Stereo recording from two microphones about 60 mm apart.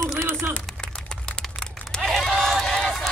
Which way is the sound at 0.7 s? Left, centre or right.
Centre.